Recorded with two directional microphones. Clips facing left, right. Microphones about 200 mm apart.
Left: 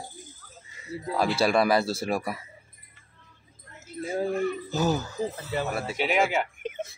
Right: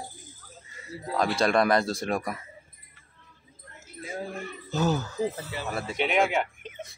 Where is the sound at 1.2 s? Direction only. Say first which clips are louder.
Even; 5° left (ahead or behind).